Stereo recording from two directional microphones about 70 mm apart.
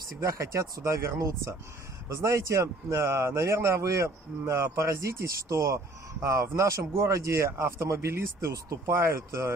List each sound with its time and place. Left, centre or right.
0.2 s a man's voice: right